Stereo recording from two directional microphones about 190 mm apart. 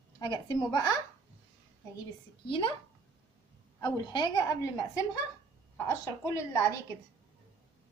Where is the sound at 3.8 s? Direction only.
20° left (ahead or behind).